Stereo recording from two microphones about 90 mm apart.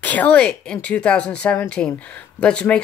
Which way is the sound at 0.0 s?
15° left (ahead or behind).